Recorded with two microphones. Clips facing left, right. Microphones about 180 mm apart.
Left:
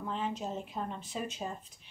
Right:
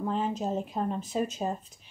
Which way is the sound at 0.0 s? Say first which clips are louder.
Right 6 dB; 40° right (ahead or behind).